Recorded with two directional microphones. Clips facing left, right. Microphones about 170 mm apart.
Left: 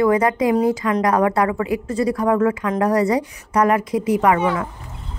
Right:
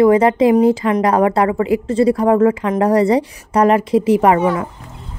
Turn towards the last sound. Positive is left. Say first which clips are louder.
# right 4 dB
turn(degrees=-30)  # may be behind; listen again after turning